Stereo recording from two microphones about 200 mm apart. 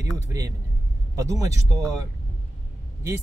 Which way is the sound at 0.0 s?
15° right (ahead or behind).